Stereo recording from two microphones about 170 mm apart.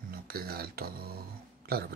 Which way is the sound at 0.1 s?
60° right (ahead or behind).